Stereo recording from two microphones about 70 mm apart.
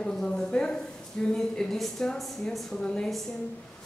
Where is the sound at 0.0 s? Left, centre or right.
Centre.